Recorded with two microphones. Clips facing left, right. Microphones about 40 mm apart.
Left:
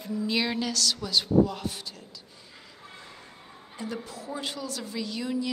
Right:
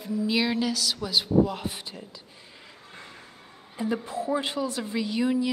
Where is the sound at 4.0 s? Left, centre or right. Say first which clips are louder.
Right 7 dB; right.